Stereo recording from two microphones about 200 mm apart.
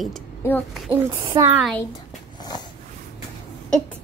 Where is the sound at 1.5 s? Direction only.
5° right (ahead or behind).